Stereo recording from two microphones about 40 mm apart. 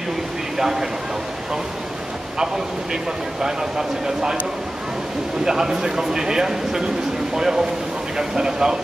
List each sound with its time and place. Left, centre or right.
0.6 s speech: centre
2.3 s a man's voice: centre
5.4 s a man's voice: centre